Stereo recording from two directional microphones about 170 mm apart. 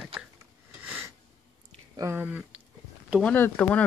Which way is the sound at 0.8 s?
10° right (ahead or behind).